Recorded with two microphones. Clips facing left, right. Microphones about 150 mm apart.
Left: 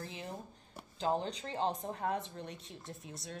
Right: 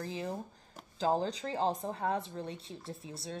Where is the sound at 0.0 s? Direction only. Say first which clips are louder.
Right 6 dB; 35° right (ahead or behind).